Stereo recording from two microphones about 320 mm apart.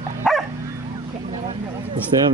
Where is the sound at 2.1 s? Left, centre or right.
Centre.